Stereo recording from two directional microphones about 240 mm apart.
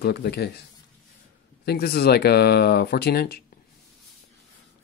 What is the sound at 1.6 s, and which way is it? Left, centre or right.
Speech, left.